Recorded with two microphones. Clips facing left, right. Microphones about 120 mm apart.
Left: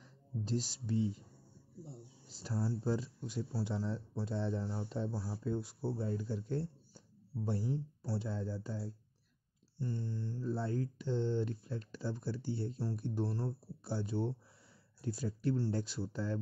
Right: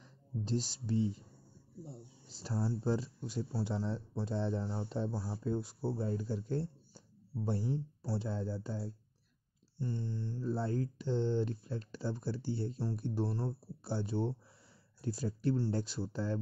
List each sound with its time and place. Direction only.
0.5 s speech: 30° right (ahead or behind)